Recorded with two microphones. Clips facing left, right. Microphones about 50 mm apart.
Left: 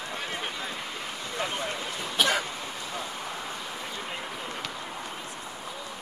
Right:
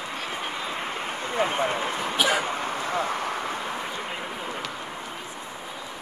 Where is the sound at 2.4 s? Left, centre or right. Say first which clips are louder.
Right 8 dB; right.